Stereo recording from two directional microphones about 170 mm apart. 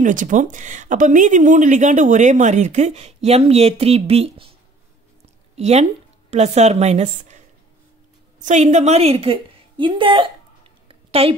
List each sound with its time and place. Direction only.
0.0 s speech: 50° right (ahead or behind)
5.6 s a woman's voice: 40° right (ahead or behind)
10.9 s a sound: 35° right (ahead or behind)